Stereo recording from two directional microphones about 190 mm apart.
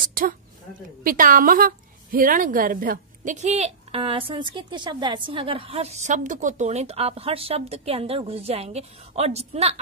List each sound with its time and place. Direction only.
0.0 s a woman's voice: 45° right (ahead or behind)